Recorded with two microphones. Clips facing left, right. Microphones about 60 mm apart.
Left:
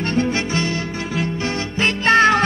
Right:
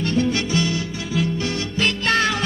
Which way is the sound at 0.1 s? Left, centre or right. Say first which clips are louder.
Left 1 dB; left.